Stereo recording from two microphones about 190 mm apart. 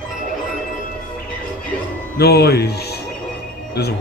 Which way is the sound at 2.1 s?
60° left (ahead or behind).